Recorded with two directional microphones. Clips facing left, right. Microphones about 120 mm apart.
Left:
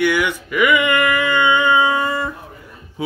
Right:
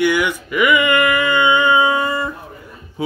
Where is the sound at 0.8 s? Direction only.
15° right (ahead or behind).